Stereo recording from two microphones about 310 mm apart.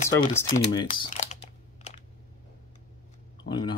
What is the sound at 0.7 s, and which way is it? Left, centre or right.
Speech, centre.